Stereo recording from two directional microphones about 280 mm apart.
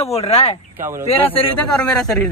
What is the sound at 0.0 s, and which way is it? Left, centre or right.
Speech, left.